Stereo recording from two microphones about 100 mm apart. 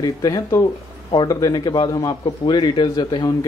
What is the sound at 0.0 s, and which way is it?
Speech, 40° left (ahead or behind).